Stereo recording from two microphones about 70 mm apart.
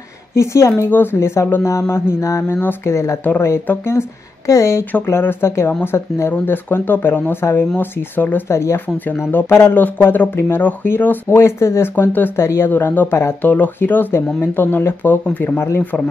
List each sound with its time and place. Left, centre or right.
0.4 s a woman's voice: left
2.2 s a woman's voice: left
4.5 s a woman's voice: left
4.9 s speech: left
8.5 s speech: left
11.9 s speech: left
15.8 s speech: left